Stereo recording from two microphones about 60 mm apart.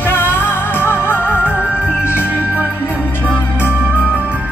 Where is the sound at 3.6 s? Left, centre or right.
Left.